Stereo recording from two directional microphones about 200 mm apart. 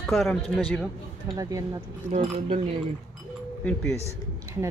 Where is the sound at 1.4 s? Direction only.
15° right (ahead or behind).